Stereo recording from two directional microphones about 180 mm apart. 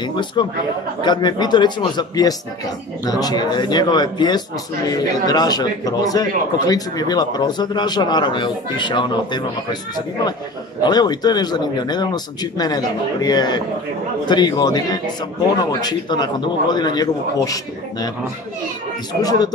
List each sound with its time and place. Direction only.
0.0 s a man's voice: 25° left (ahead or behind)
19.2 s a man's voice: 25° left (ahead or behind)